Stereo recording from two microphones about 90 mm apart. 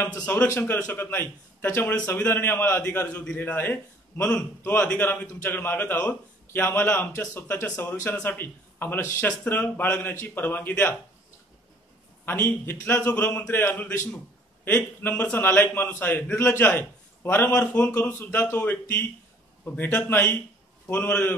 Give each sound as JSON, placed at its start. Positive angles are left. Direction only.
{"t": 0.0, "sound": "a man's voice", "side_deg": 20}
{"t": 12.3, "sound": "a man's voice", "side_deg": 25}